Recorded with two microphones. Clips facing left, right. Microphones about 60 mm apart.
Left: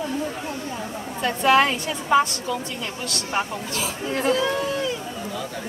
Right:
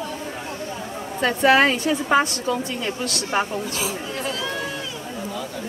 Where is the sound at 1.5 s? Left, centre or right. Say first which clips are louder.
Right 2 dB; right.